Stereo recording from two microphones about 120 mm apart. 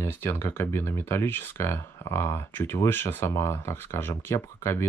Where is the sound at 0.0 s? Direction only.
20° left (ahead or behind).